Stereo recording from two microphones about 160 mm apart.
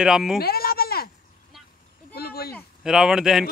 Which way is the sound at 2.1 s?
75° left (ahead or behind).